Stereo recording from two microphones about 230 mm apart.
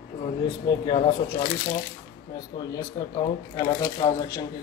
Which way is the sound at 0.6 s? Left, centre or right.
Left.